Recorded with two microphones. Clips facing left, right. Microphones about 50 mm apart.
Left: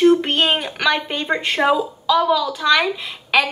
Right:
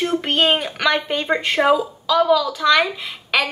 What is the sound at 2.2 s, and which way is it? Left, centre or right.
Speech, centre.